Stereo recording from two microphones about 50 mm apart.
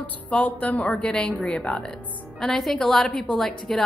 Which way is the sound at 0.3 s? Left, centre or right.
Left.